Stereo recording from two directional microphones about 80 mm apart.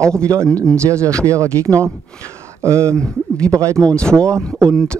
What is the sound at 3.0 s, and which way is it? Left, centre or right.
Speech, centre.